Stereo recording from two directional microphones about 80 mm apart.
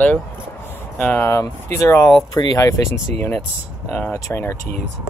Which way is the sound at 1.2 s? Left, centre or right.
Left.